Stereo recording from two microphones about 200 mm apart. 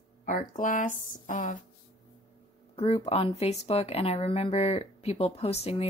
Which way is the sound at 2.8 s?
30° left (ahead or behind).